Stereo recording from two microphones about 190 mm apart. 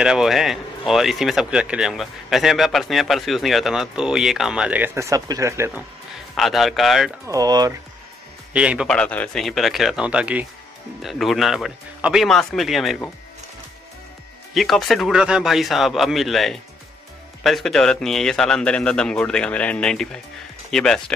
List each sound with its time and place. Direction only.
0.0 s speech: centre (ahead or behind)
6.3 s speech: centre (ahead or behind)
7.2 s speech: 20° right (ahead or behind)
8.5 s speech: 5° right (ahead or behind)
8.9 s speech: 5° left (ahead or behind)
14.5 s speech: centre (ahead or behind)